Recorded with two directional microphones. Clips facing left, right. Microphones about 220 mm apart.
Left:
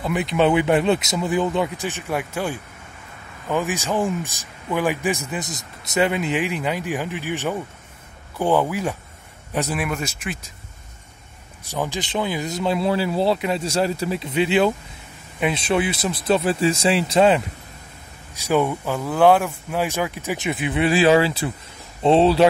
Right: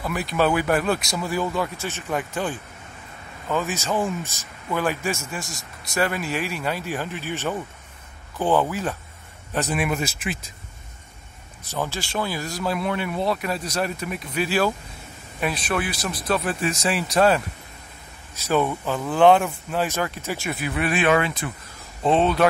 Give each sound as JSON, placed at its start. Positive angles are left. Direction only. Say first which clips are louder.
{"t": 0.0, "sound": "a man's voice", "louder": "left 3 dB", "side_deg": 20}
{"t": 9.8, "sound": "speech", "louder": "right 1 dB", "side_deg": -5}
{"t": 11.6, "sound": "speech", "louder": "left 2 dB", "side_deg": 15}